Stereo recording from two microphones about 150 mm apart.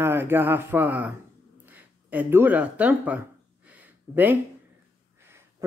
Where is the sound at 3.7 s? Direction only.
10° right (ahead or behind).